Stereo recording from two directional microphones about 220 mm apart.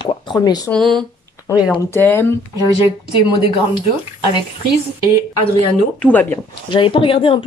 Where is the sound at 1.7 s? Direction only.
10° left (ahead or behind).